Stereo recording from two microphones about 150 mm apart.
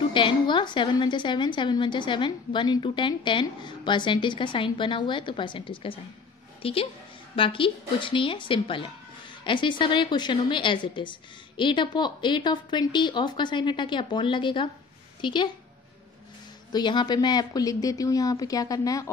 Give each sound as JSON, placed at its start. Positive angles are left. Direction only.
{"t": 0.1, "sound": "a woman's voice", "side_deg": 35}
{"t": 16.7, "sound": "speech", "side_deg": 30}